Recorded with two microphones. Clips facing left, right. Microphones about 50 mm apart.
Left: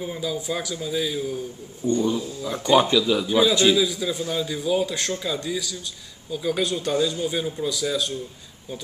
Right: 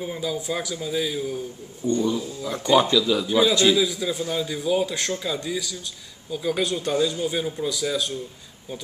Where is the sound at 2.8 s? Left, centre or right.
Centre.